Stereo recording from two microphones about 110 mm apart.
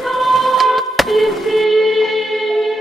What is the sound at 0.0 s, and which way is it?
Music, centre (ahead or behind).